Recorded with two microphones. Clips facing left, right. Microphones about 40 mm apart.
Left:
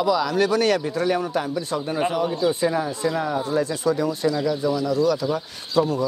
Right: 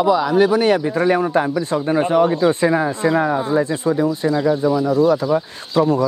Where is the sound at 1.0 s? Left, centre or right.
Right.